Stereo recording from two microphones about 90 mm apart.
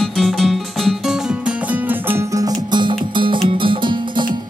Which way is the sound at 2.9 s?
80° right.